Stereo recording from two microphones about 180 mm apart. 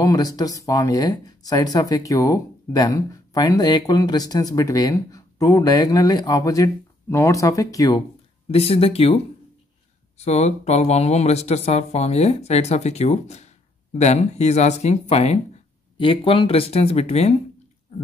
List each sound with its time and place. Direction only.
0.0 s speech: 20° left (ahead or behind)
8.5 s speech: 35° left (ahead or behind)